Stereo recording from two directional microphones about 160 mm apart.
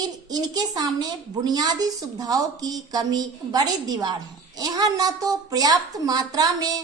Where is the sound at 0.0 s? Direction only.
25° right (ahead or behind).